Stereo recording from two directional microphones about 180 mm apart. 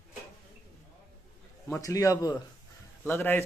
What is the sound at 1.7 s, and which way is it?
A man's voice, 20° left (ahead or behind).